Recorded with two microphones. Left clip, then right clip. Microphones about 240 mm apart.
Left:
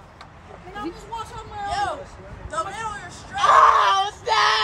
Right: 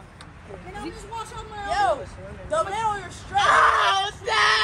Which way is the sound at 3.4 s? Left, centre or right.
Left.